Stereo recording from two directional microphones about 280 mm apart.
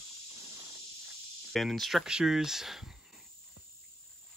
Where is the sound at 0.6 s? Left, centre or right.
Centre.